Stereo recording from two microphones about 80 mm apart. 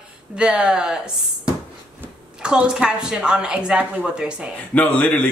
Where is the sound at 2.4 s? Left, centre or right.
Centre.